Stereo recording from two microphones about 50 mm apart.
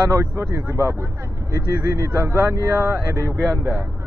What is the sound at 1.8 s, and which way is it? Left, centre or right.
Speech, right.